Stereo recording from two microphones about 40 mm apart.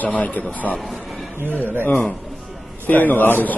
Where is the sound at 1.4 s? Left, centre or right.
Right.